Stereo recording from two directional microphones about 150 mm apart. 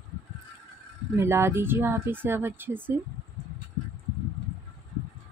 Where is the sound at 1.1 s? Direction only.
15° right (ahead or behind).